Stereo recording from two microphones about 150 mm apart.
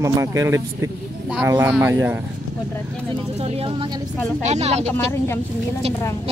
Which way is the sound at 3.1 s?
40° right (ahead or behind).